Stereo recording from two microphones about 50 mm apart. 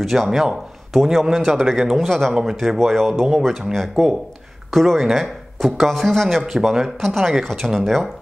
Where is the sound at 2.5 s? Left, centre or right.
Centre.